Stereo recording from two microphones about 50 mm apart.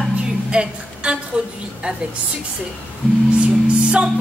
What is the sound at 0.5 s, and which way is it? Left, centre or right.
A woman's voice, centre.